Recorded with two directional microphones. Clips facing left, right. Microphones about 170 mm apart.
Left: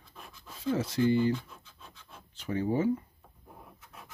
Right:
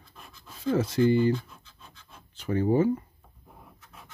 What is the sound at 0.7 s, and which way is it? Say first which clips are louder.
Speech: right 4 dB; 55° right (ahead or behind).